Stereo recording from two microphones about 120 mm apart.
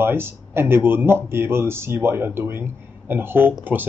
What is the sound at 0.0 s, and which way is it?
Speech, 20° right (ahead or behind).